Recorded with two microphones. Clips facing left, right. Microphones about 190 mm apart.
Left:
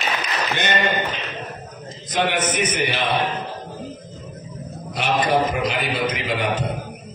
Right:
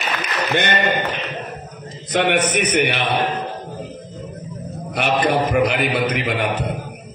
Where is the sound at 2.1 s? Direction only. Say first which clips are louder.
Right 4 dB; 65° right (ahead or behind).